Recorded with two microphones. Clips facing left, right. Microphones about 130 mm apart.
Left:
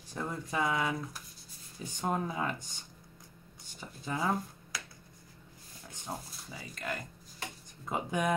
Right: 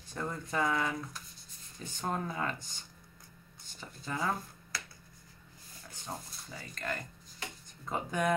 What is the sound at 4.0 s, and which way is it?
Speech, 20° left (ahead or behind).